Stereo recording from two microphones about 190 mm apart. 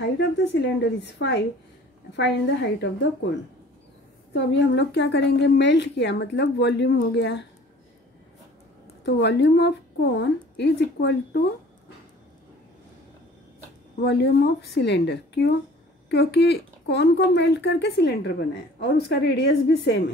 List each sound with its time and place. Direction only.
0.0 s a woman's voice: 65° left (ahead or behind)
4.3 s a woman's voice: 65° left (ahead or behind)
9.0 s a woman's voice: 65° left (ahead or behind)
13.9 s a woman's voice: 60° left (ahead or behind)